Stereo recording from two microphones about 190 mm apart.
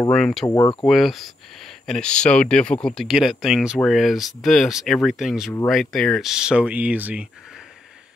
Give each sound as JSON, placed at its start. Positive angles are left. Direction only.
{"t": 0.1, "sound": "speech", "side_deg": 0}
{"t": 0.5, "sound": "speech", "side_deg": 20}
{"t": 0.8, "sound": "speech", "side_deg": 0}